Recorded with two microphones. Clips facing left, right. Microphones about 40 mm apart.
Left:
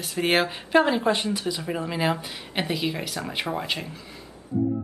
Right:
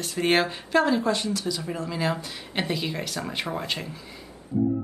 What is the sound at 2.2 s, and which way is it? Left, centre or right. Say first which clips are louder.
Speech: even; centre.